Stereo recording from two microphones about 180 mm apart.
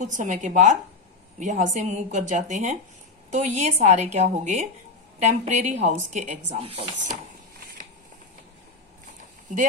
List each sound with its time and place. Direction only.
0.0 s a woman's voice: 45° right (ahead or behind)